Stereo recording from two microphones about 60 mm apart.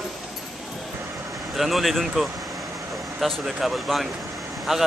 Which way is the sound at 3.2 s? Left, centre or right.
Centre.